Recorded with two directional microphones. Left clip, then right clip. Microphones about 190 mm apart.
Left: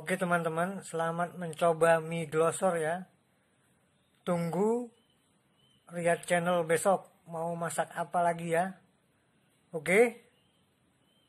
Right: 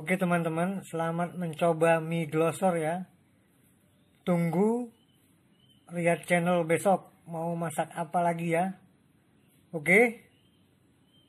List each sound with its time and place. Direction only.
0.0 s speech: 10° left (ahead or behind)
4.2 s speech: 10° left (ahead or behind)
5.9 s speech: 10° left (ahead or behind)